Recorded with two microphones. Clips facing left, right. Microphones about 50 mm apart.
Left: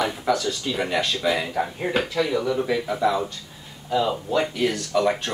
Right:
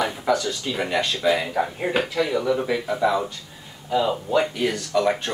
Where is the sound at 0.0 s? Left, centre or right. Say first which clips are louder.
Right 1 dB; centre.